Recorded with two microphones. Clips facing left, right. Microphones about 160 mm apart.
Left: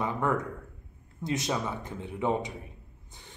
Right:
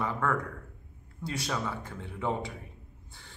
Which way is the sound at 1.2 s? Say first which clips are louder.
Left 3 dB; 20° left (ahead or behind).